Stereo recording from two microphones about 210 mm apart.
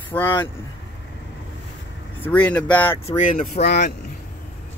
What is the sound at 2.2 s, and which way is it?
Speech, 10° left (ahead or behind).